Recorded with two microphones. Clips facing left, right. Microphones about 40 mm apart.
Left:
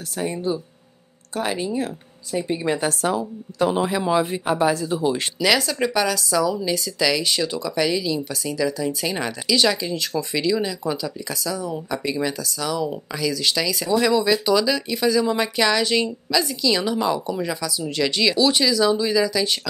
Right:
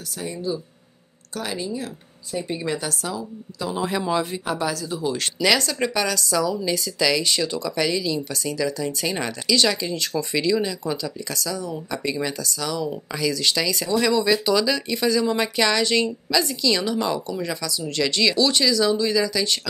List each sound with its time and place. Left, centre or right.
0.1 s speech: left
2.3 s speech: centre
2.7 s speech: left
4.0 s speech: centre
5.4 s a woman's voice: centre